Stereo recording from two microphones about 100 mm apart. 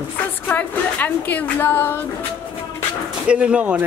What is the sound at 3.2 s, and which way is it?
Speech, 10° right (ahead or behind).